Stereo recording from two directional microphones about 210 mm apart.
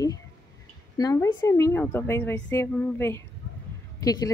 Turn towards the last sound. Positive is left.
turn(degrees=15)  # may be behind; listen again after turning